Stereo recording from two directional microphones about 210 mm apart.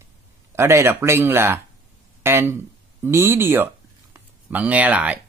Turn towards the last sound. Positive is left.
turn(degrees=-5)  # may be behind; listen again after turning